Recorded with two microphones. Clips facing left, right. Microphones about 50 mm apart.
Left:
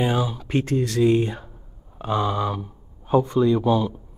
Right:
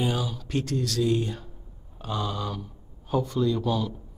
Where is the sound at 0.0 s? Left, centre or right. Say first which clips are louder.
Left 5 dB; left.